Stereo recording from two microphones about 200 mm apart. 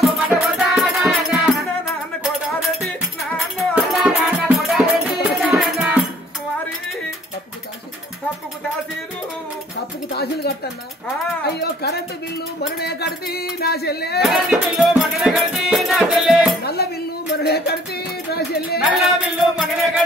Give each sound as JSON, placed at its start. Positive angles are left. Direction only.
{"t": 0.3, "sound": "music", "side_deg": 0}
{"t": 3.3, "sound": "music", "side_deg": 0}
{"t": 10.0, "sound": "a sound", "side_deg": 55}
{"t": 14.2, "sound": "music", "side_deg": 0}
{"t": 16.6, "sound": "music", "side_deg": 50}
{"t": 18.8, "sound": "music", "side_deg": -5}